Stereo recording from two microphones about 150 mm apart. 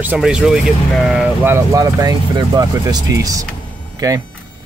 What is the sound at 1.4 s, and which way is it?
Speech, 20° right (ahead or behind).